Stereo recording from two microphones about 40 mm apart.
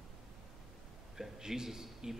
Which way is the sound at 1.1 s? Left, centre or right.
Centre.